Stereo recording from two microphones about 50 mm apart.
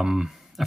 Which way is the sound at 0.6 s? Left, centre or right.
Centre.